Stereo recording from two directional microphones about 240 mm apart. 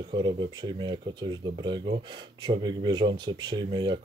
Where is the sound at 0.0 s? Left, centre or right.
Centre.